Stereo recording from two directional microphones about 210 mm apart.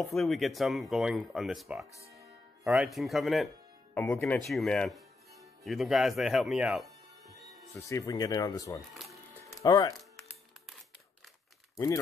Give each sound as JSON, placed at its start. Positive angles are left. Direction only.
{"t": 0.1, "sound": "speech", "side_deg": 0}
{"t": 2.1, "sound": "music", "side_deg": -10}
{"t": 3.9, "sound": "speech", "side_deg": 10}
{"t": 7.9, "sound": "speech", "side_deg": 15}
{"t": 9.5, "sound": "music", "side_deg": 20}
{"t": 11.7, "sound": "speech", "side_deg": 15}